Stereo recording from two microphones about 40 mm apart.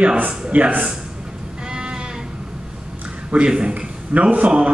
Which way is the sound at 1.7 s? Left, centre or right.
Centre.